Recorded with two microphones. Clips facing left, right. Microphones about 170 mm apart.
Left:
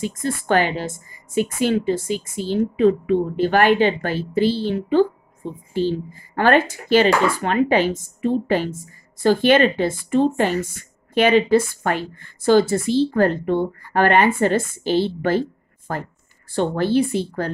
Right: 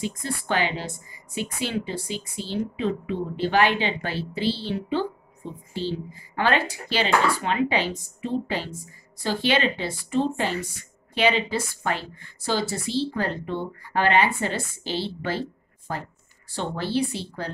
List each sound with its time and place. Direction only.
0.0 s speech: 50° left (ahead or behind)